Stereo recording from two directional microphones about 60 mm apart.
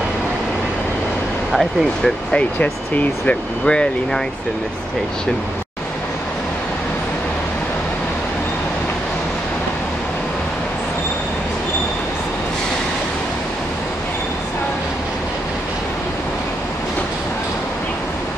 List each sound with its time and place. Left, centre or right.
1.5 s speech: centre
2.3 s speech: left